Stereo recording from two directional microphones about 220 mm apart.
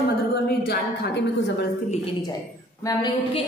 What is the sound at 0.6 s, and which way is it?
Speech, 45° left (ahead or behind).